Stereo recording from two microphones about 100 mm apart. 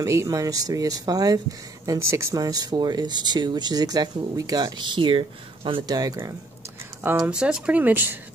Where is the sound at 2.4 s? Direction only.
40° right (ahead or behind); by 5.8 s 60° right (ahead or behind).